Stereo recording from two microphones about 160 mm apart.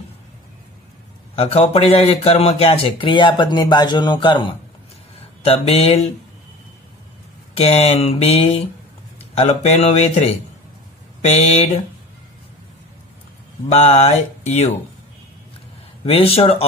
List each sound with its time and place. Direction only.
1.3 s a man's voice: 40° left (ahead or behind)
7.5 s a man's voice: 40° left (ahead or behind)
13.7 s speech: 45° left (ahead or behind)
16.0 s a man's voice: 40° left (ahead or behind)